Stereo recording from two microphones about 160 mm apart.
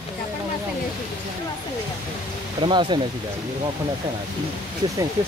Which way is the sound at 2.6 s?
30° right (ahead or behind).